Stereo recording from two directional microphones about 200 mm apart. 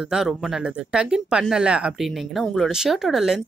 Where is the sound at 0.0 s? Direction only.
5° right (ahead or behind).